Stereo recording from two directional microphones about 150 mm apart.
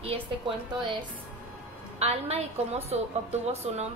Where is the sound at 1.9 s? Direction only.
45° right (ahead or behind).